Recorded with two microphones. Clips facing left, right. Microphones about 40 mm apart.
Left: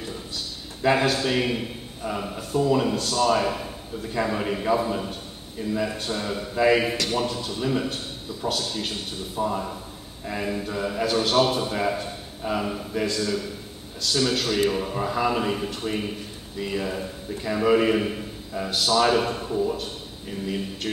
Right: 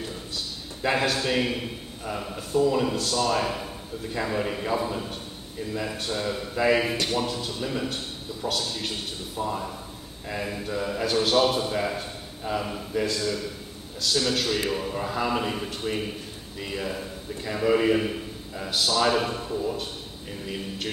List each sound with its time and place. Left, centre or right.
0.8 s a man's voice: centre
9.4 s a man's voice: centre
10.2 s a man's voice: centre